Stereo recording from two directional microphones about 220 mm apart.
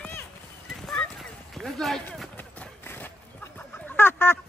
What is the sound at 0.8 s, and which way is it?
Clip-clop, centre (ahead or behind).